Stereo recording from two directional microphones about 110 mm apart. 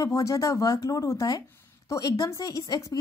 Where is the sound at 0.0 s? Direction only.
30° left (ahead or behind).